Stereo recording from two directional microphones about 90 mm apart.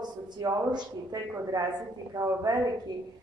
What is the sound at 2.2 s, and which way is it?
Speech, 50° right (ahead or behind).